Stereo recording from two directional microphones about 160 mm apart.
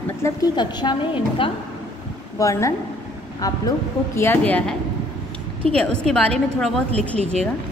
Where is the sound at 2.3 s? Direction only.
20° left (ahead or behind).